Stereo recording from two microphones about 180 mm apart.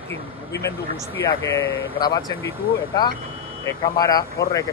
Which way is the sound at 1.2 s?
15° left (ahead or behind).